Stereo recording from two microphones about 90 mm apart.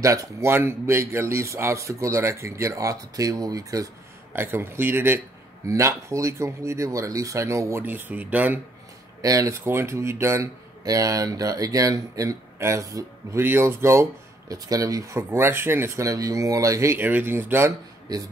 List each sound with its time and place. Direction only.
0.0 s speech: 35° right (ahead or behind)
4.3 s speech: 25° right (ahead or behind)
7.8 s speech: 20° right (ahead or behind)
9.2 s speech: 40° right (ahead or behind)
14.5 s speech: 40° right (ahead or behind)
17.0 s speech: 20° right (ahead or behind)